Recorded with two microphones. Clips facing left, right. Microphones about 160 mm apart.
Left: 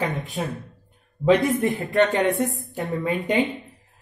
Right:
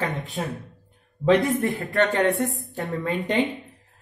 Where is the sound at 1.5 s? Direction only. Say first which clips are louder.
Left 2 dB; 20° left (ahead or behind).